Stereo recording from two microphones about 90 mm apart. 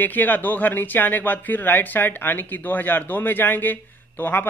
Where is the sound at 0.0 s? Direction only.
20° left (ahead or behind).